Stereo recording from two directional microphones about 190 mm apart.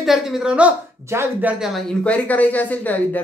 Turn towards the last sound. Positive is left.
turn(degrees=10)  # may be behind; listen again after turning